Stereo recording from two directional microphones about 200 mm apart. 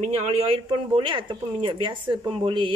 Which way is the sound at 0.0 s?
30° right (ahead or behind).